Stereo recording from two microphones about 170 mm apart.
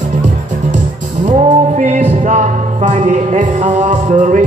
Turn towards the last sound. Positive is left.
turn(degrees=-45)  # may be behind; listen again after turning